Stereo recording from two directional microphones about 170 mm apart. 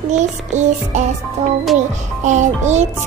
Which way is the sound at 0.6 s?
45° right (ahead or behind).